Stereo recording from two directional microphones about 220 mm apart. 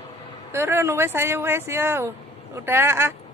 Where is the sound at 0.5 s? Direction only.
10° right (ahead or behind).